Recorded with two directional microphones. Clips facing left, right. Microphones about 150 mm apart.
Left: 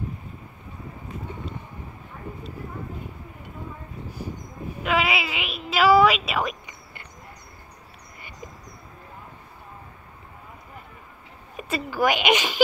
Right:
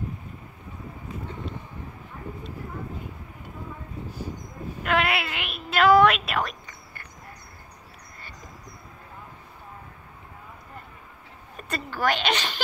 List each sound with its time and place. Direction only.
4.8 s a woman's voice: centre (ahead or behind)
6.6 s a sound: 20° left (ahead or behind)
11.5 s a woman's voice: 10° left (ahead or behind)